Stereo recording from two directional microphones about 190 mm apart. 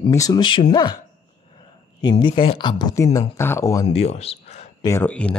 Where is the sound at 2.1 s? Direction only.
25° left (ahead or behind).